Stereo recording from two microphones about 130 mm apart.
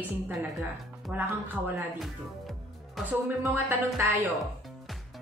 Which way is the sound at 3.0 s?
15° right (ahead or behind).